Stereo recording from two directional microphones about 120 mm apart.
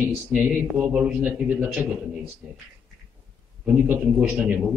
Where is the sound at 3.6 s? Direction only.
15° right (ahead or behind).